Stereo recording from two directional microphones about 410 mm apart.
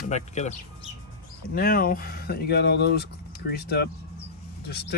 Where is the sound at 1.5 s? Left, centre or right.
Left.